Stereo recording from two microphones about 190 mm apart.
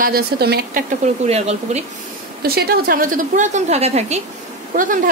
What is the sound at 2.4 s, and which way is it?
Speech, 55° right (ahead or behind).